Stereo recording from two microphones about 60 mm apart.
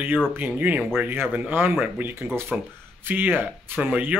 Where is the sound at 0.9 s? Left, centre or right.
Right.